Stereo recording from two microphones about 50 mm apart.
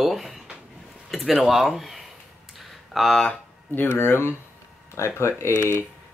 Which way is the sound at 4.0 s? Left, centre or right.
Left.